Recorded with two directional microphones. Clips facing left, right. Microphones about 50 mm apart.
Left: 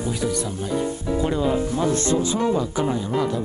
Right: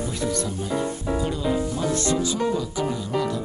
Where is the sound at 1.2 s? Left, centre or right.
Left.